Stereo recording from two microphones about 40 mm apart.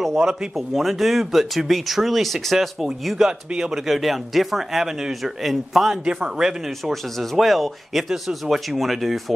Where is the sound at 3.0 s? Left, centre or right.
Centre.